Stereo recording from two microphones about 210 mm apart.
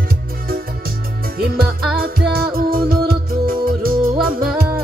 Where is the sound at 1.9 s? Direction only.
45° right (ahead or behind).